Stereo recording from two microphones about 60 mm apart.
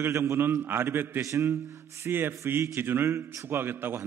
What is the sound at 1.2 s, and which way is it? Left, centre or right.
Speech, right.